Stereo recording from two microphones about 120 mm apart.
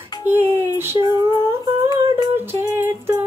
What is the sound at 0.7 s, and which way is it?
Music, 20° right (ahead or behind).